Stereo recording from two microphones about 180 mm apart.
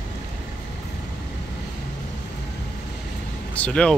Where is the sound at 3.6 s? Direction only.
5° left (ahead or behind).